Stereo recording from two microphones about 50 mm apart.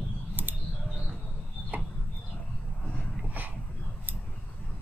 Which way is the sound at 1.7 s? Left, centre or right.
Right.